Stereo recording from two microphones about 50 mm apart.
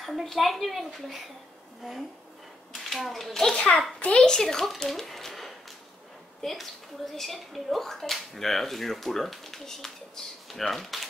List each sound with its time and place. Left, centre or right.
0.0 s speech: centre
2.9 s speech: centre
3.5 s a child's voice: left; by 11.1 s centre